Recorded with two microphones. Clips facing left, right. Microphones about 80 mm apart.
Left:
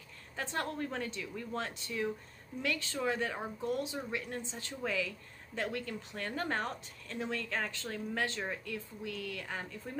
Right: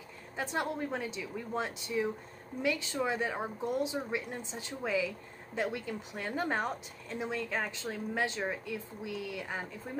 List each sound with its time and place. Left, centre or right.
0.4 s speech: centre